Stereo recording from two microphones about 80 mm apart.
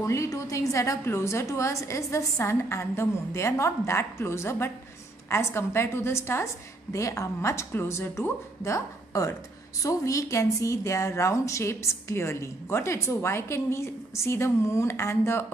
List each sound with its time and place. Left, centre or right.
0.0 s a woman's voice: left